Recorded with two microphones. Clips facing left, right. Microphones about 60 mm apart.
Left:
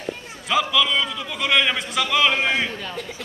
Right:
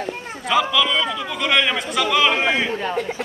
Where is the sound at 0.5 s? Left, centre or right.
Centre.